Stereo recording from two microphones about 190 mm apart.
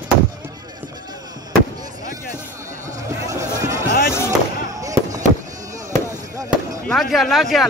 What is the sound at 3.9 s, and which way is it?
Music, 55° left (ahead or behind).